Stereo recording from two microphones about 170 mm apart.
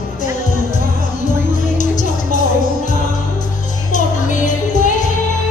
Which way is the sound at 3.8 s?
45° left (ahead or behind).